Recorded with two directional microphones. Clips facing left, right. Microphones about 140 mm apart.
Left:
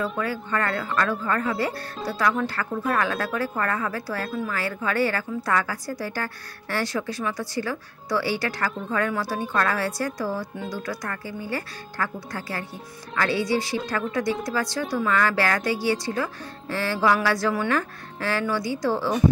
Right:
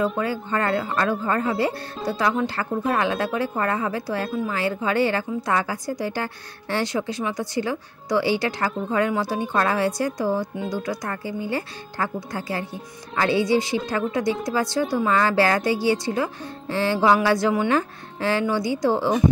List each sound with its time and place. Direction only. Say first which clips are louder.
0.2 s a woman's voice: right 2 dB; 25° right (ahead or behind)